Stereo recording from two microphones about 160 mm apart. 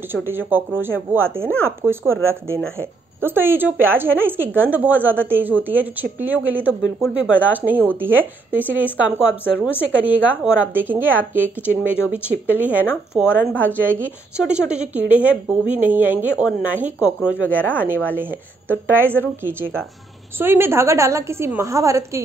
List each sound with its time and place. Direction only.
0.1 s a woman's voice: 15° right (ahead or behind)
13.4 s speech: 10° left (ahead or behind)
13.7 s a woman's voice: 10° right (ahead or behind)
17.5 s speech: 10° left (ahead or behind)
18.1 s a woman's voice: 10° right (ahead or behind)
20.3 s a woman's voice: 15° right (ahead or behind)